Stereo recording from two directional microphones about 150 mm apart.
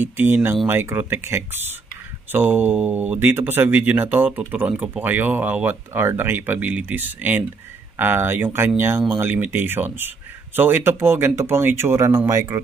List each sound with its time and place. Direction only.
0.0 s speech: 15° right (ahead or behind)